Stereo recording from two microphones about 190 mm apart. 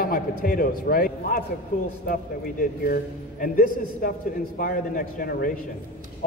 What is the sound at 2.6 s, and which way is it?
A man's voice, 45° left (ahead or behind).